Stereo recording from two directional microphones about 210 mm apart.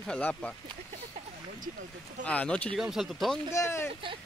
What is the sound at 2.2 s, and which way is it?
Speech, 5° left (ahead or behind).